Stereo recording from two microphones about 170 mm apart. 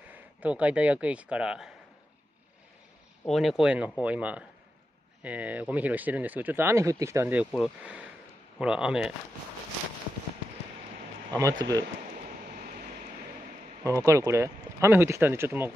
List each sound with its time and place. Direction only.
0.1 s speech: 10° right (ahead or behind)
3.3 s speech: centre (ahead or behind)
11.3 s speech: 20° right (ahead or behind)
13.8 s speech: 15° right (ahead or behind)